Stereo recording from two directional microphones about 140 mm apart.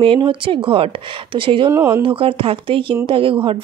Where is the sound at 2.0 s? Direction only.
40° right (ahead or behind).